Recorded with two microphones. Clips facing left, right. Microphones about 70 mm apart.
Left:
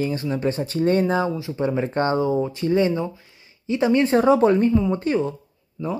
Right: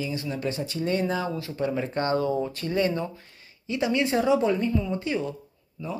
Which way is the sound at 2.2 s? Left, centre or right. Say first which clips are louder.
Left 5 dB; centre.